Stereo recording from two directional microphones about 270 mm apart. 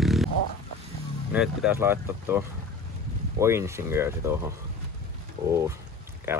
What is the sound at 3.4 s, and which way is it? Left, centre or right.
Speech, centre.